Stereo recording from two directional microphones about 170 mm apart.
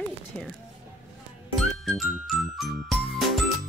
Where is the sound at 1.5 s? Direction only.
Centre (ahead or behind).